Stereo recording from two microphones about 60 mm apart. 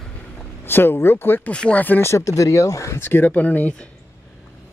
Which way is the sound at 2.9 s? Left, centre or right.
Left.